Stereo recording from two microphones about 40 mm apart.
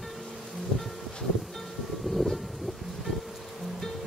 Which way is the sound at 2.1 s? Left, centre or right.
Centre.